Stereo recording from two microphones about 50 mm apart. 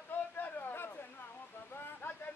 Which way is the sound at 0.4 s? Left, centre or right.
Left.